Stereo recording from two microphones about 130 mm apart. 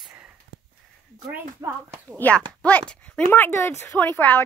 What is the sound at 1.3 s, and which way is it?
Speech, 20° right (ahead or behind).